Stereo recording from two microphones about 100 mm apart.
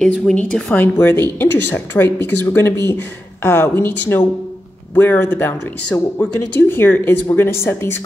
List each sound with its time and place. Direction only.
0.0 s a woman's voice: 10° left (ahead or behind)
0.7 s speech: 20° left (ahead or behind)